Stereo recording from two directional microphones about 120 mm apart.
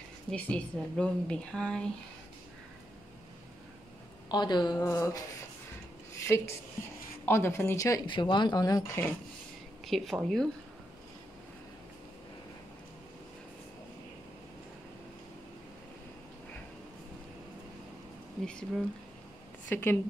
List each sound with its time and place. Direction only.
0.3 s speech: 10° left (ahead or behind)
4.3 s speech: 35° left (ahead or behind)
4.7 s speech: 25° left (ahead or behind)
8.1 s speech: 40° left (ahead or behind); by 9.1 s 20° left (ahead or behind)
9.8 s speech: centre (ahead or behind)
18.4 s a sound: 5° left (ahead or behind)
19.7 s speech: 15° left (ahead or behind)